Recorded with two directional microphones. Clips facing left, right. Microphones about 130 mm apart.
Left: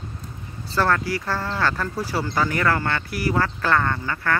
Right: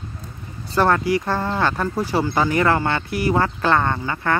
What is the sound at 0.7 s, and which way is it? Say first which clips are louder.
Speech: right 4 dB; 20° right (ahead or behind).